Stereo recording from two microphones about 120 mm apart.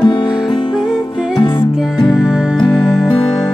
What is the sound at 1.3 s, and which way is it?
Music, 40° left (ahead or behind).